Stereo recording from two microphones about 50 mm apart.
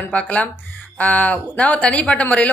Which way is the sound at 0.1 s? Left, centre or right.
Left.